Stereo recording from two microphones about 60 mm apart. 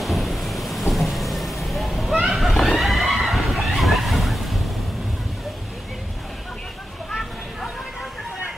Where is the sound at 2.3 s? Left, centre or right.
Centre.